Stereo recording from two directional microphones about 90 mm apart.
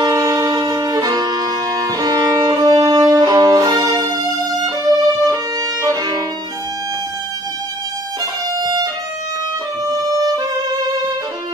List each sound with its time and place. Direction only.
0.0 s music: 40° right (ahead or behind)
0.6 s violin: 50° right (ahead or behind)
8.5 s violin: 50° right (ahead or behind)